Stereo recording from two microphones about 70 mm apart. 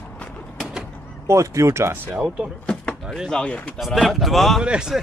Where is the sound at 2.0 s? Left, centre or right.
Centre.